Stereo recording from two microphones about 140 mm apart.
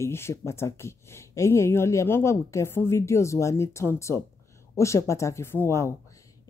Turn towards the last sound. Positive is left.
turn(degrees=20)  # may be behind; listen again after turning